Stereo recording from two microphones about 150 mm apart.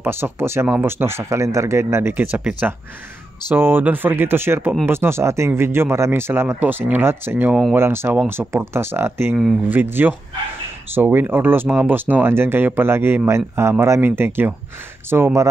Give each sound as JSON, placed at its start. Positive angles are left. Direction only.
{"t": 0.0, "sound": "speech", "side_deg": -15}